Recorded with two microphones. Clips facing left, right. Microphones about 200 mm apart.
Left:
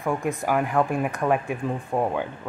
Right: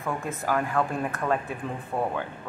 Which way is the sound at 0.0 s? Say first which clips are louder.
Left 5 dB; 15° left (ahead or behind).